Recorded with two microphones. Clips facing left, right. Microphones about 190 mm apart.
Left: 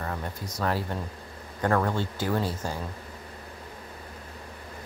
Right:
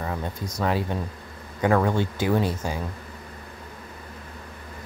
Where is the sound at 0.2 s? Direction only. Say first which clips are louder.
Right 3 dB; 15° right (ahead or behind).